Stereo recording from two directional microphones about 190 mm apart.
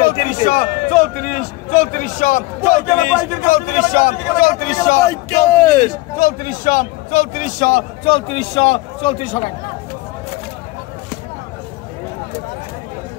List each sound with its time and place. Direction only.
0.0 s a man's voice: 45° left (ahead or behind)
5.0 s speech: 15° left (ahead or behind)
6.1 s a man's voice: 40° left (ahead or behind)